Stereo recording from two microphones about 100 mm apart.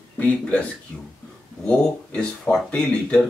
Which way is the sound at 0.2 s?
15° left (ahead or behind).